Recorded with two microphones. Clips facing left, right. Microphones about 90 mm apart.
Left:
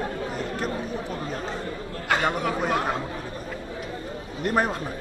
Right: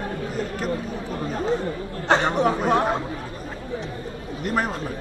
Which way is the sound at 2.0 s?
30° right (ahead or behind).